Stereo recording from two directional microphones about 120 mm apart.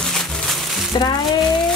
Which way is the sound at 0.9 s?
35° left (ahead or behind).